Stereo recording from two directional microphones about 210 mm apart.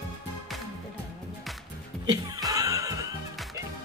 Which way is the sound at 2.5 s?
15° right (ahead or behind).